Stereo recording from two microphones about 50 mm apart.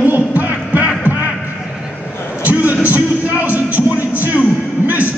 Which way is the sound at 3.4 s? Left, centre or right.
Right.